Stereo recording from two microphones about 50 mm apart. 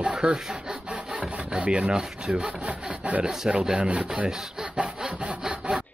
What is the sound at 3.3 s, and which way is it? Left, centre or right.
Rub, centre.